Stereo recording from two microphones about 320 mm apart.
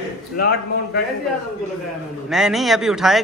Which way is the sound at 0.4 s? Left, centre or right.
Left.